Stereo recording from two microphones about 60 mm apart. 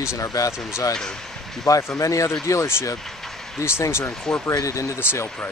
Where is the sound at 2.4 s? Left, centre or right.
Left.